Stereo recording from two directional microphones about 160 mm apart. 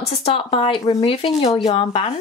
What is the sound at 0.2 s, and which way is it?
Speech, 35° left (ahead or behind).